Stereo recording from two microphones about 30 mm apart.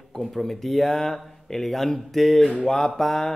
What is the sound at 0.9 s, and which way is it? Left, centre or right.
Mantra, centre.